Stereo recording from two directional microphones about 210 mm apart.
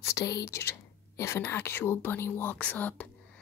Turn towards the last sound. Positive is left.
turn(degrees=5)  # may be behind; listen again after turning